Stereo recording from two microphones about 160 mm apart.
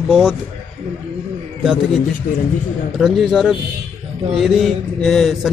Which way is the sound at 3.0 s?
Centre (ahead or behind).